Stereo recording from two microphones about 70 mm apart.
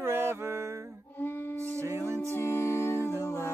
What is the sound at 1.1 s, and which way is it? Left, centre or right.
Music, left.